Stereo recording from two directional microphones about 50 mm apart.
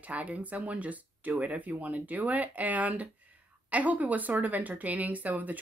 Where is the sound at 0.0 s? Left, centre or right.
Right.